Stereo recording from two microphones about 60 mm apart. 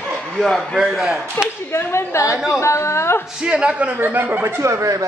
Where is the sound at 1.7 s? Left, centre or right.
Left.